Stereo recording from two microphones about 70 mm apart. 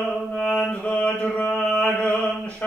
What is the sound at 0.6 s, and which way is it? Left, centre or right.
Mantra, left.